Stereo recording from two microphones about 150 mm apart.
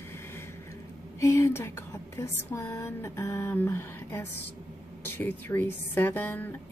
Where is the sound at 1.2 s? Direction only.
20° left (ahead or behind).